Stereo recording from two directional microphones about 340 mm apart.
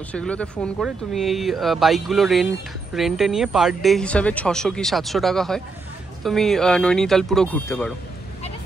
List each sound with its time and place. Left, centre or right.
0.1 s speech: centre